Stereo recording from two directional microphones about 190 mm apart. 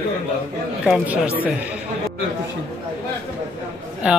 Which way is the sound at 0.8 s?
5° right (ahead or behind).